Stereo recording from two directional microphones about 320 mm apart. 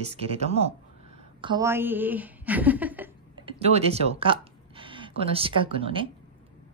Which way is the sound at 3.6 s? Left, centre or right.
Centre.